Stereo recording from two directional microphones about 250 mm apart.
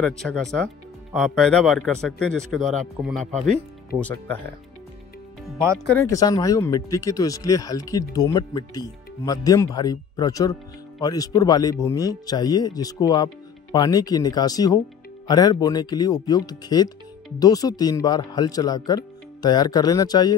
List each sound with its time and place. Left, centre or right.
0.0 s speech: centre
5.9 s speech: centre